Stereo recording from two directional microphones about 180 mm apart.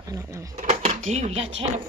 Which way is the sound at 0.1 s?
15° right (ahead or behind).